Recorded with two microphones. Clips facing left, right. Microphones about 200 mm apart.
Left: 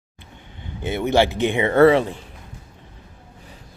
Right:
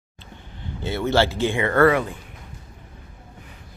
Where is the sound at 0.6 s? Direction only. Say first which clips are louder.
Left 2 dB; 20° left (ahead or behind).